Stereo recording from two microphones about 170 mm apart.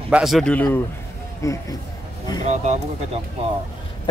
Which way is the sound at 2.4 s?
45° right (ahead or behind).